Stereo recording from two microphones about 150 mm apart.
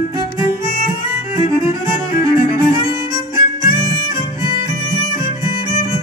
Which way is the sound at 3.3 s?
20° right (ahead or behind).